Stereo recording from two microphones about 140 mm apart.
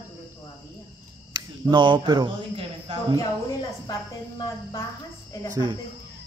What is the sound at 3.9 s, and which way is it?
Speech, 25° left (ahead or behind).